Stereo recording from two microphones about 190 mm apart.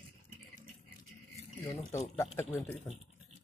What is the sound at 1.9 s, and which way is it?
Speech, 15° left (ahead or behind).